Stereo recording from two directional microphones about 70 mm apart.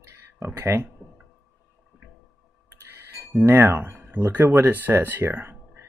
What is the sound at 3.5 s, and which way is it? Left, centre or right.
Speech, right.